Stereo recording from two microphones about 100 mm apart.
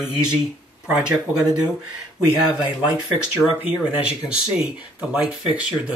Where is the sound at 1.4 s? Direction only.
40° right (ahead or behind).